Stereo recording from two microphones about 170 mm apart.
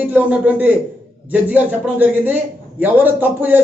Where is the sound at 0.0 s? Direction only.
10° right (ahead or behind).